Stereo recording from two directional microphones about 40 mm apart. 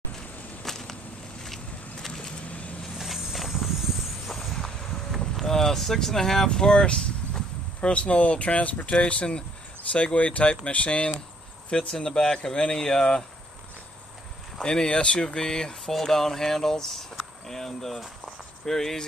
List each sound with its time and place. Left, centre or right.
0.7 s whip: centre
1.4 s a sound: centre
2.4 s vehicle: left
3.0 s vehicle: centre
3.3 s a sound: centre
5.4 s speech: centre; by 8.9 s left
8.9 s speech: left
12.1 s speech: centre
14.6 s speech: centre